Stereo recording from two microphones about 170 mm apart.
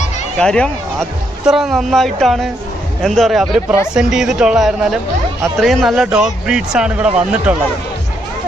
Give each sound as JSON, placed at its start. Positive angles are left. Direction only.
{"t": 0.4, "sound": "speech", "side_deg": 5}